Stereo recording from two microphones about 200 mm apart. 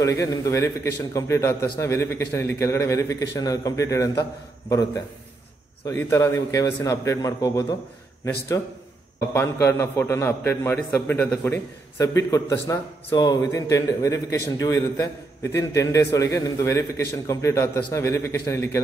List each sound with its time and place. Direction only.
0.0 s a man's voice: 15° left (ahead or behind)
9.3 s a man's voice: 10° left (ahead or behind)